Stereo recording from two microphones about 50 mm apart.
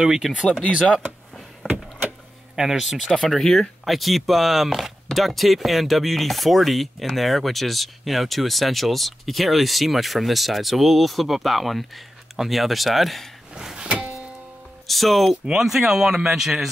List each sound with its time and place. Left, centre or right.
0.0 s speech: centre
1.7 s vehicle: right
2.5 s speech: centre
13.6 s music: centre
14.9 s speech: centre